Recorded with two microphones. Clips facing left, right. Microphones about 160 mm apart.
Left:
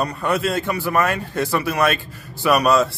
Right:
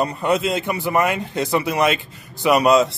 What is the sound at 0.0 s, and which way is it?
A man's voice, 20° right (ahead or behind).